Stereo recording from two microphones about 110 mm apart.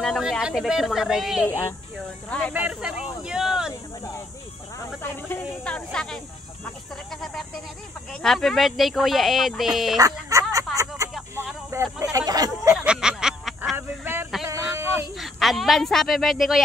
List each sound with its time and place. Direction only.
0.0 s speech: centre (ahead or behind)
2.2 s speech: 10° left (ahead or behind)
2.5 s speech: 10° right (ahead or behind)
5.6 s speech: 10° left (ahead or behind)
8.2 s speech: 5° left (ahead or behind)
9.9 s speech: 30° right (ahead or behind)
11.0 s a sound: 25° right (ahead or behind)
12.7 s a sound: 5° right (ahead or behind)
13.7 s a sound: 20° right (ahead or behind)
15.1 s speech: centre (ahead or behind)